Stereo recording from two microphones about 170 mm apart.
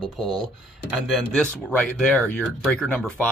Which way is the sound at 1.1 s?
5° left (ahead or behind).